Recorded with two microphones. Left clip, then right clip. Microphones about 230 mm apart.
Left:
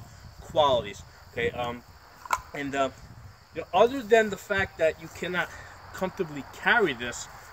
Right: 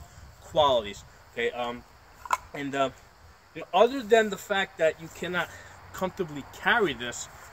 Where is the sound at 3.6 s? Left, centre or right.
Centre.